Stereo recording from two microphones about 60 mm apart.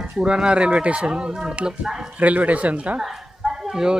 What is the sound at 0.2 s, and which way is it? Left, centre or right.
Speech, centre.